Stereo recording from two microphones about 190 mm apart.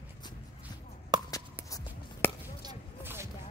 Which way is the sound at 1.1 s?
20° right (ahead or behind).